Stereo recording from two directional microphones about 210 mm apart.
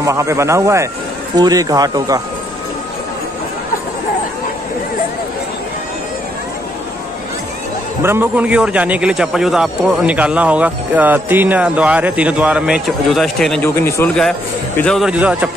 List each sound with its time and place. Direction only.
0.0 s speech: 15° right (ahead or behind)
8.0 s a man's voice: 10° right (ahead or behind)